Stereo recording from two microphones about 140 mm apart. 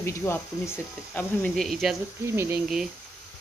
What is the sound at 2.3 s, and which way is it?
Speech, 20° right (ahead or behind).